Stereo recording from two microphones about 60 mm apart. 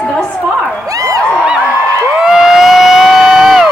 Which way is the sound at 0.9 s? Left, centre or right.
Right.